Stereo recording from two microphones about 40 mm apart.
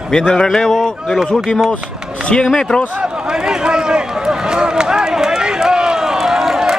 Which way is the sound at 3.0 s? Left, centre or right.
Centre.